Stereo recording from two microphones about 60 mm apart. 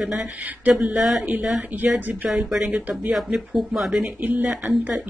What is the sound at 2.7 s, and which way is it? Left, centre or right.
Speech, right.